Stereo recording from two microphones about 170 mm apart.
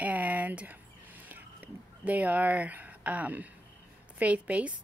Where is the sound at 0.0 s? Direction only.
10° right (ahead or behind).